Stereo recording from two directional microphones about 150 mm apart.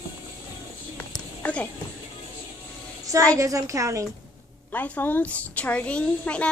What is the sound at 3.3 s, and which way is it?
Speech, 20° right (ahead or behind).